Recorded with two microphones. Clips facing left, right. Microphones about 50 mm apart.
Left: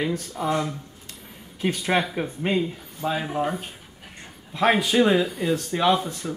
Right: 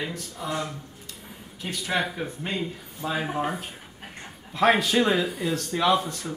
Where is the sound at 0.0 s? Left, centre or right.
Left.